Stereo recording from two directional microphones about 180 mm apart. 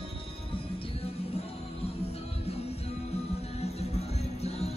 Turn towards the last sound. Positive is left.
turn(degrees=35)  # may be behind; listen again after turning